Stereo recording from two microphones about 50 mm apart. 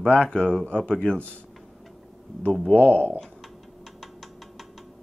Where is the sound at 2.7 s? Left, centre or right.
Left.